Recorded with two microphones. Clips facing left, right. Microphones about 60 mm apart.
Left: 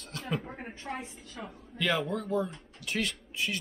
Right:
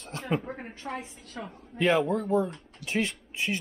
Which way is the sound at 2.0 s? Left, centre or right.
Right.